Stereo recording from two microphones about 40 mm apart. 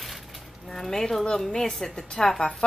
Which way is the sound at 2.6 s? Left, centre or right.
Left.